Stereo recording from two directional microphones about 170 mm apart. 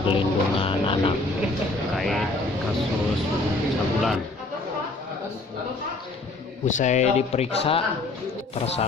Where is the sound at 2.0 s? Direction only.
Centre (ahead or behind).